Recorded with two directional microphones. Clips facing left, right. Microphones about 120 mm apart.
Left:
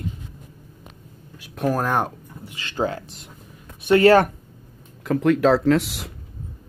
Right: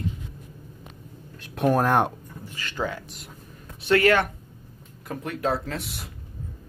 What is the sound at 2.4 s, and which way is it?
Speech, 25° left (ahead or behind).